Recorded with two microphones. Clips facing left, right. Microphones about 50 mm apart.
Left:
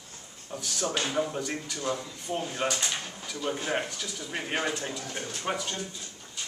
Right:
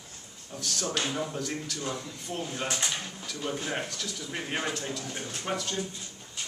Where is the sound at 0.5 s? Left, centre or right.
Centre.